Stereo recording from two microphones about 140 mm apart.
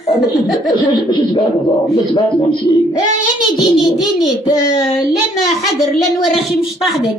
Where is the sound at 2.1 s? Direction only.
40° left (ahead or behind).